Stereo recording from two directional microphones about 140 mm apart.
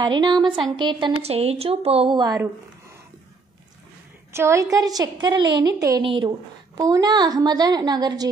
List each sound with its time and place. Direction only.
0.0 s a woman's voice: 30° right (ahead or behind)
1.2 s a woman's voice: 45° right (ahead or behind); by 2.5 s 25° right (ahead or behind)
4.3 s a woman's voice: 20° right (ahead or behind)
6.0 s a woman's voice: 40° right (ahead or behind)
6.7 s a woman's voice: 25° right (ahead or behind)